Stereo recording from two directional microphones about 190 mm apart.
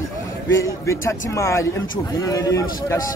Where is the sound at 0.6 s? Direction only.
15° left (ahead or behind).